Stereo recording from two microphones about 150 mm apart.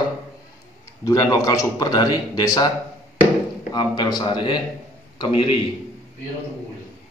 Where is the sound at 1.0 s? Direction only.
20° left (ahead or behind).